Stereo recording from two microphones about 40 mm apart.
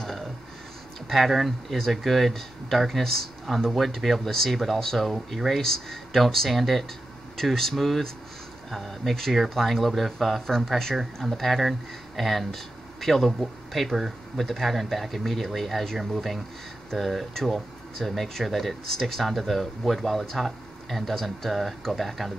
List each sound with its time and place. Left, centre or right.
0.0 s a sound: centre
1.0 s speech: centre
5.6 s speech: centre